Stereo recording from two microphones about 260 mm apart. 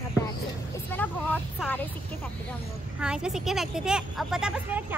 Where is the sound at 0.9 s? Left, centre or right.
Centre.